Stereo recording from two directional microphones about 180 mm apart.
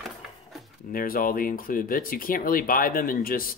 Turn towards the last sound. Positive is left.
turn(degrees=50)  # may be behind; listen again after turning